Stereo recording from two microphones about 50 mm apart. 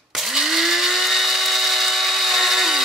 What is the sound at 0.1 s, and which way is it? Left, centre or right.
Drill, centre.